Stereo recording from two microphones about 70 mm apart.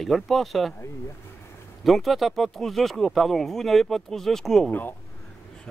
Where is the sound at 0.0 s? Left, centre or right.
Centre.